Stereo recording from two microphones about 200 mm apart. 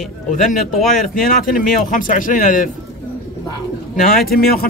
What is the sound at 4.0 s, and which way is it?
Speech, 45° left (ahead or behind).